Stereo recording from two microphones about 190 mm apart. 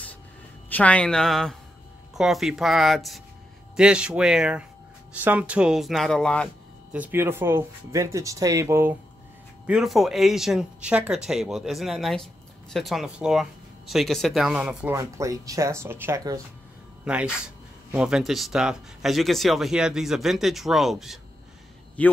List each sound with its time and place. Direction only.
0.7 s speech: 10° left (ahead or behind)
6.9 s speech: 10° right (ahead or behind)
9.7 s speech: centre (ahead or behind)
15.0 s a man's voice: 15° right (ahead or behind); by 22.1 s 5° left (ahead or behind)